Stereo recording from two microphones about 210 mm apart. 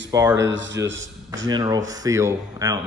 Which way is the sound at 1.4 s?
20° right (ahead or behind).